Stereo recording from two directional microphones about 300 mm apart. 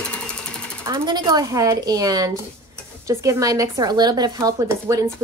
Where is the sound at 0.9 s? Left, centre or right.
Centre.